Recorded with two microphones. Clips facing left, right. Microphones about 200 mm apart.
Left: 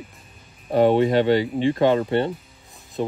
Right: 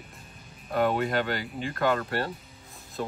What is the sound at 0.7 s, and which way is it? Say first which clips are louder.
Speech: left 9 dB; 30° left (ahead or behind).